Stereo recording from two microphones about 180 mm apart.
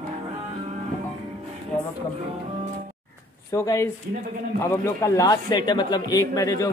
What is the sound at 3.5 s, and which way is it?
A man's voice, 15° left (ahead or behind).